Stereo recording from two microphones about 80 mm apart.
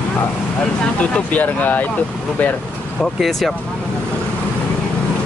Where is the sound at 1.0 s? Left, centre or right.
Centre.